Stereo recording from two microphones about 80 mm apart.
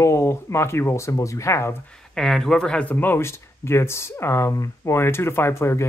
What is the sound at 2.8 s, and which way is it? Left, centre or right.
Speech, left.